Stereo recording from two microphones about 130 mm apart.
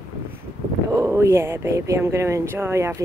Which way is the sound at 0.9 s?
20° right (ahead or behind).